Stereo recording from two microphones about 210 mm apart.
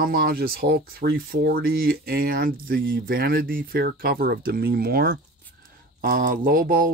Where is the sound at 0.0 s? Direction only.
45° right (ahead or behind).